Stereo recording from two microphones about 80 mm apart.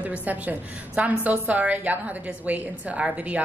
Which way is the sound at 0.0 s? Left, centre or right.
Centre.